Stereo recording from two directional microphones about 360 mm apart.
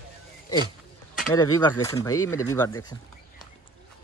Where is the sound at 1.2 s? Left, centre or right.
Centre.